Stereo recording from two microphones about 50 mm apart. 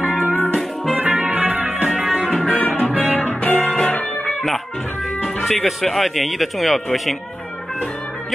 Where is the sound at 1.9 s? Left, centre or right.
Centre.